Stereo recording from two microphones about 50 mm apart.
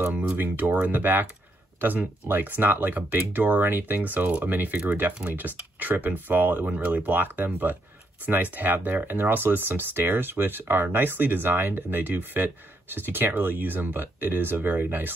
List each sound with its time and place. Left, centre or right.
0.1 s speech: right